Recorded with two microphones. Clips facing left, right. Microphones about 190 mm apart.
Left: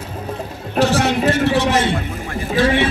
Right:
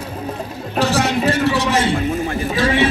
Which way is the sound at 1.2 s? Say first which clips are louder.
Left 1 dB; 55° left (ahead or behind).